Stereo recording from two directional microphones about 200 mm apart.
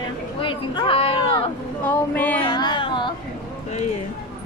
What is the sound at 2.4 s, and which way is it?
Carnatic music, 20° left (ahead or behind).